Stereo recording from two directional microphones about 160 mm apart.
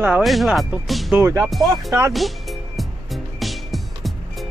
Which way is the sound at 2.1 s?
Centre (ahead or behind).